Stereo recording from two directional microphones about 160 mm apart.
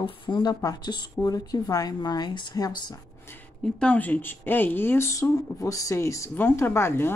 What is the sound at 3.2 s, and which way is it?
Speech, 10° left (ahead or behind).